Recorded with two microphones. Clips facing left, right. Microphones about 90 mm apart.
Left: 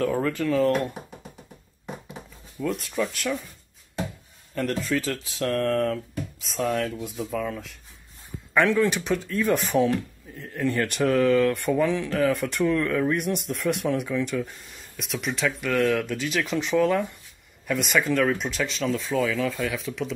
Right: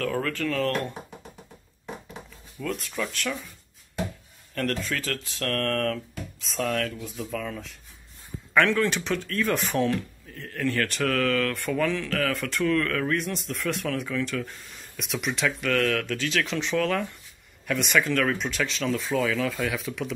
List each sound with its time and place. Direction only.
0.0 s speech: 20° left (ahead or behind)
2.6 s speech: 15° left (ahead or behind)
4.6 s speech: 10° left (ahead or behind)
10.3 s speech: 15° left (ahead or behind)
12.6 s speech: 20° left (ahead or behind); by 15.7 s centre (ahead or behind)
15.7 s speech: 10° left (ahead or behind)
17.6 s speech: 5° left (ahead or behind)